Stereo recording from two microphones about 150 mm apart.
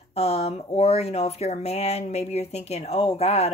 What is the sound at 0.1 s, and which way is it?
Speech, 40° left (ahead or behind).